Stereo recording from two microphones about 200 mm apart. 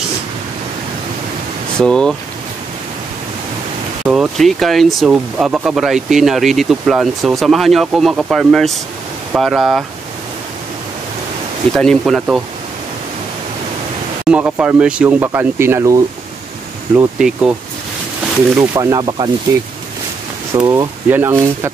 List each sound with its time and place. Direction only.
1.8 s speech: 5° left (ahead or behind)
4.0 s speech: centre (ahead or behind)
11.7 s speech: centre (ahead or behind)
14.2 s speech: 5° right (ahead or behind)
18.6 s speech: 15° right (ahead or behind)
20.5 s speech: 20° right (ahead or behind)